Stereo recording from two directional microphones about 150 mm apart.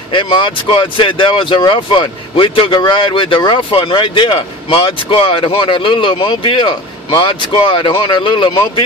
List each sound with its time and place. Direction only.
0.1 s speech: 35° left (ahead or behind)